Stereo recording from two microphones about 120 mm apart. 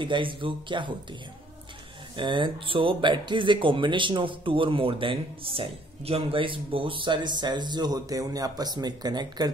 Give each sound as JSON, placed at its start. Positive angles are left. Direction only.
{"t": 0.0, "sound": "speech", "side_deg": -45}
{"t": 2.1, "sound": "speech", "side_deg": -40}